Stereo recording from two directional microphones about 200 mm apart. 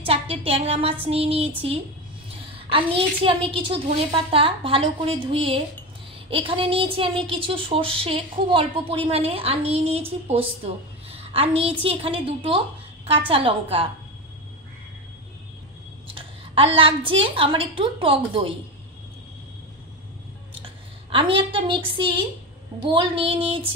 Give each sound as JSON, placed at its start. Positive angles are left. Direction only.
{"t": 0.0, "sound": "a woman's voice", "side_deg": -30}
{"t": 2.5, "sound": "a woman's voice", "side_deg": -30}
{"t": 16.1, "sound": "a woman's voice", "side_deg": -25}
{"t": 20.6, "sound": "a woman's voice", "side_deg": -25}